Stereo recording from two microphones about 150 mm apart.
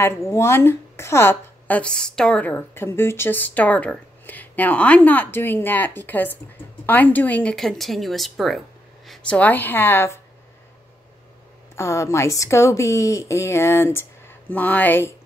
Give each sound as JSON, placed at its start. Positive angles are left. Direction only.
{"t": 0.0, "sound": "a woman's voice", "side_deg": 20}
{"t": 11.7, "sound": "a woman's voice", "side_deg": 20}